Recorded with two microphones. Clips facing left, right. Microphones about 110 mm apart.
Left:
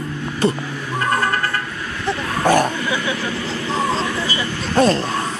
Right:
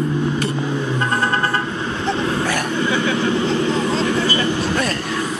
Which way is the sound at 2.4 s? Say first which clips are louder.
Left 6 dB; 40° left (ahead or behind).